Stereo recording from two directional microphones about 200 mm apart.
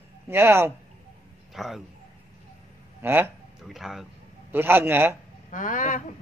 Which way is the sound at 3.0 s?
10° right (ahead or behind).